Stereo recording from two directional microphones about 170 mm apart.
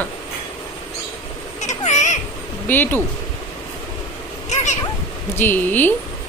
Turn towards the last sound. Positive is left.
turn(degrees=10)  # may be behind; listen again after turning